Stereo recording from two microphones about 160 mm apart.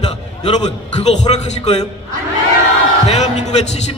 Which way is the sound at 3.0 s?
45° left (ahead or behind).